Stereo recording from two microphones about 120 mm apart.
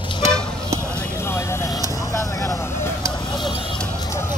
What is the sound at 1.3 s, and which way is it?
Vehicle, 20° left (ahead or behind).